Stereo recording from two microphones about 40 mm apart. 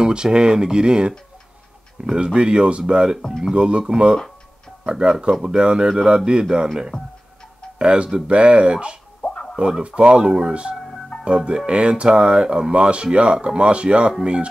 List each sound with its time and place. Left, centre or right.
0.0 s speech: right
2.2 s speech: right
6.9 s speech: left
7.8 s speech: right
9.3 s a sound: centre
9.7 s speech: right